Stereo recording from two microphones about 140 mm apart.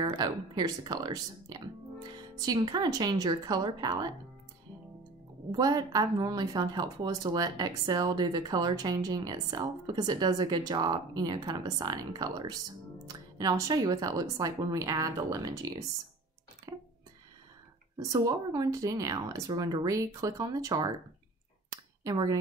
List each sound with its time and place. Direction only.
0.0 s a woman's voice: 30° right (ahead or behind)
5.5 s a woman's voice: 25° right (ahead or behind)
17.9 s a woman's voice: 25° right (ahead or behind)
22.0 s a woman's voice: 25° right (ahead or behind)